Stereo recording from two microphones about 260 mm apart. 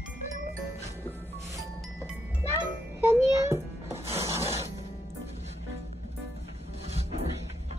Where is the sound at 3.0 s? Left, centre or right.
Centre.